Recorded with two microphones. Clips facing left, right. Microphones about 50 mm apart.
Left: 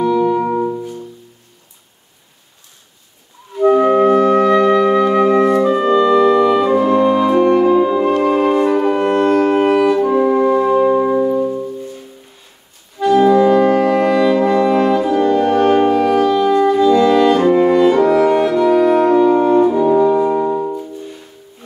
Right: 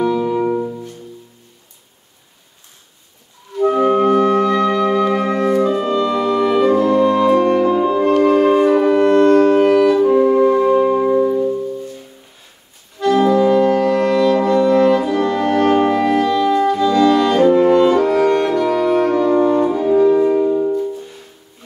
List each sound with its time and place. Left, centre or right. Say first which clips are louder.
0.0 s music: left 2 dB; centre
3.5 s clarinet: left 3 dB; centre
4.4 s music: left 4 dB; centre
6.8 s music: left 1 dB; centre
8.5 s music: right 1 dB; centre
8.8 s music: right 2 dB; left
13.0 s music: left 3 dB; centre
13.3 s brass instrument: left 2 dB; centre
16.6 s music: left 3 dB; centre
19.9 s brass instrument: even; centre